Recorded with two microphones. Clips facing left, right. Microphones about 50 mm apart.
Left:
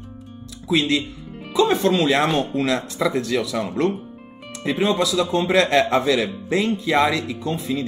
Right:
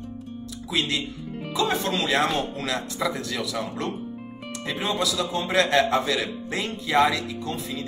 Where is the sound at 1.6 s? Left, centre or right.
Left.